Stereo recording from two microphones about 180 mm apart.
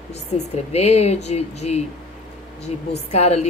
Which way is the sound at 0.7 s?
35° left (ahead or behind).